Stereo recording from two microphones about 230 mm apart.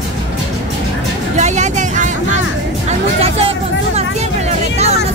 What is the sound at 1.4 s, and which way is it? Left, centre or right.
Speech, right.